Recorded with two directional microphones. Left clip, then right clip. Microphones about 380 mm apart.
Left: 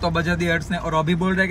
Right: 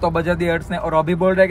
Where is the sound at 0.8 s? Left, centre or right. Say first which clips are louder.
Right 7 dB; right.